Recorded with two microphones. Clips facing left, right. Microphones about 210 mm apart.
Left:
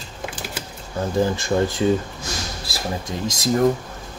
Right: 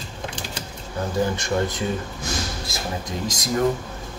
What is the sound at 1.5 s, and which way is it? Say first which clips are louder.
Speech: left 4 dB; 30° left (ahead or behind).